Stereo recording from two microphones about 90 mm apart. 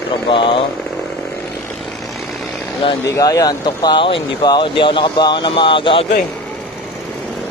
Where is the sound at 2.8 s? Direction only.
70° left (ahead or behind).